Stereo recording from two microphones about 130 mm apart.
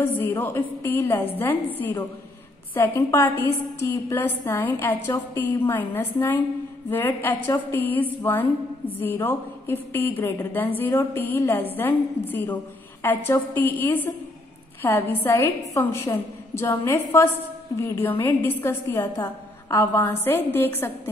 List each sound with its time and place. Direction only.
0.0 s a woman's voice: 15° left (ahead or behind)